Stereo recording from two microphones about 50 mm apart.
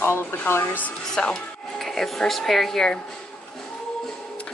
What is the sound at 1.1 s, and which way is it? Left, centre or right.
Speech, centre.